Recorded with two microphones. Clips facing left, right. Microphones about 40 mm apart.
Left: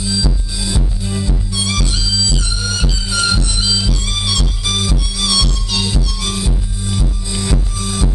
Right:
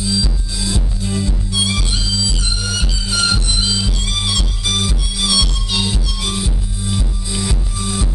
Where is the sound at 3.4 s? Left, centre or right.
Centre.